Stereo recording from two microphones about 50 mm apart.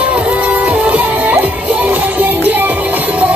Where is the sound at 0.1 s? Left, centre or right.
Right.